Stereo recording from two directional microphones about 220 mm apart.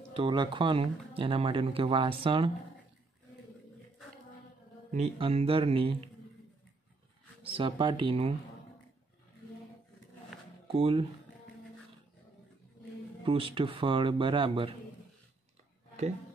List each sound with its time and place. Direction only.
0.1 s speech: 20° right (ahead or behind)
4.9 s speech: 30° right (ahead or behind)
7.4 s speech: 25° right (ahead or behind)
10.7 s speech: 25° right (ahead or behind)
13.2 s speech: 25° right (ahead or behind)